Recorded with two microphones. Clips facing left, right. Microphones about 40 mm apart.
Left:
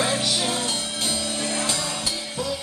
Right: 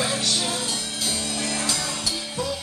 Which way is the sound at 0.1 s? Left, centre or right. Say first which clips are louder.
Left 1 dB; centre.